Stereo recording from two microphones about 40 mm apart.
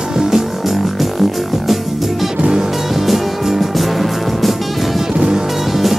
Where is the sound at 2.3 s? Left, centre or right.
Right.